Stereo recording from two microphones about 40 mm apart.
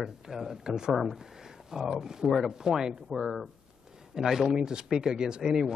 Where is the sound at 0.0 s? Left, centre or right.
Centre.